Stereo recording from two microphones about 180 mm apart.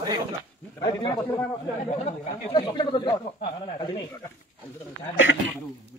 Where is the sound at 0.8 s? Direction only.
25° left (ahead or behind).